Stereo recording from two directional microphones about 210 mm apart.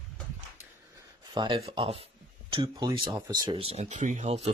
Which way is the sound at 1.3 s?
25° right (ahead or behind).